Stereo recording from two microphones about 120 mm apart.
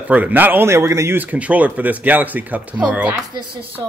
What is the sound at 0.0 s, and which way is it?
A man's voice, 15° right (ahead or behind).